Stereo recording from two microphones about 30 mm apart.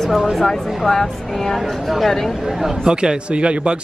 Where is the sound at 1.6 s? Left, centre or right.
Centre.